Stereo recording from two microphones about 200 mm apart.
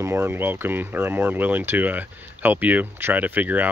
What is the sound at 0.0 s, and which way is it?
Speech, 10° right (ahead or behind).